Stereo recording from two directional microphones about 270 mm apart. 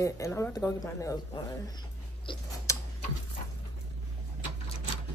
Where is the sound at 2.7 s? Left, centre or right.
Centre.